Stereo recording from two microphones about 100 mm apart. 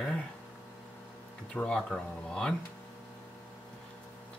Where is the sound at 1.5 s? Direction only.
10° left (ahead or behind).